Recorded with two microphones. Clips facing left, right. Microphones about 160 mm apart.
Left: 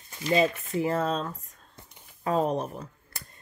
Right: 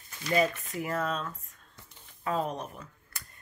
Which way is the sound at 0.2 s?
25° left (ahead or behind).